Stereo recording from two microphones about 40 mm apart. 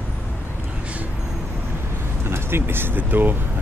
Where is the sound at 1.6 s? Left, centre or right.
Right.